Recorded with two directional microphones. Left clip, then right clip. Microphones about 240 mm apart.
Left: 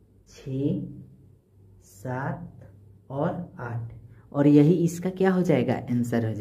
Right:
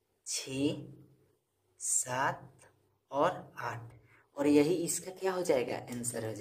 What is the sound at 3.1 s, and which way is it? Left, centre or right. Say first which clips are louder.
A woman's voice: left 1 dB; centre.